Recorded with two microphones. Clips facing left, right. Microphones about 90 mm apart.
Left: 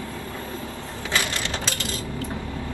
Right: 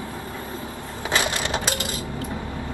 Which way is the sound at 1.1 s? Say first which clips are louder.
Right 3 dB; 20° right (ahead or behind).